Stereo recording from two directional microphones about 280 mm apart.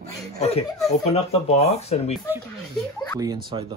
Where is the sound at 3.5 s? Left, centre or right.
Centre.